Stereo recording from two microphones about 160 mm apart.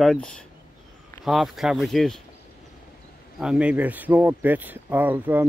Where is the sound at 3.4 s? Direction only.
5° right (ahead or behind).